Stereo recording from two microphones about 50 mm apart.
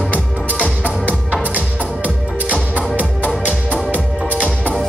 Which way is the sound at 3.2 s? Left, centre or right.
Left.